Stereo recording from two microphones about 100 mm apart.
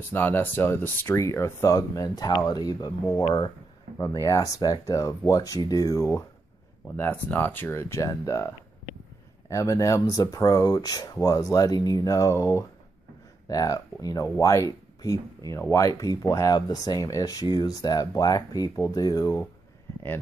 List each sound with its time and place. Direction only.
0.1 s speech: 20° left (ahead or behind); by 6.0 s 35° left (ahead or behind)
7.0 s speech: 15° left (ahead or behind)
9.5 s speech: 30° left (ahead or behind)